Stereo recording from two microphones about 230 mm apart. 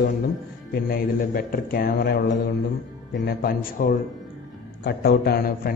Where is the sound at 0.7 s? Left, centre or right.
Left.